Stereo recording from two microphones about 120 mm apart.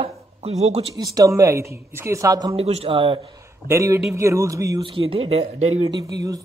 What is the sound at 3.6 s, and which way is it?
A man's voice, 25° right (ahead or behind).